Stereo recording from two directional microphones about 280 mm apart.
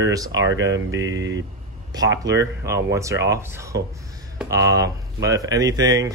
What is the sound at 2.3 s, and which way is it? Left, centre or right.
Speech, centre.